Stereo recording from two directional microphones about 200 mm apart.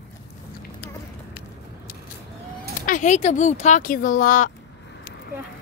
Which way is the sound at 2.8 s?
40° left (ahead or behind).